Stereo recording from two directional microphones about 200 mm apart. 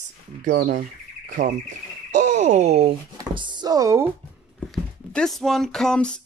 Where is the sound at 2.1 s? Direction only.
35° right (ahead or behind); by 4.1 s 15° right (ahead or behind).